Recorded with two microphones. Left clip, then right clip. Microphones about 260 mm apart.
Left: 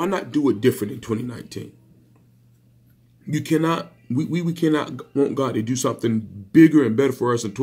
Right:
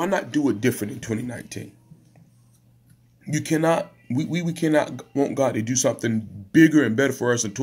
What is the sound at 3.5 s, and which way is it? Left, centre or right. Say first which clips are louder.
Speech: right 1 dB; right.